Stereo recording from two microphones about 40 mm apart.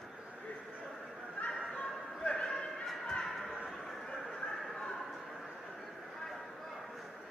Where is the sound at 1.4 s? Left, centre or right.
Left.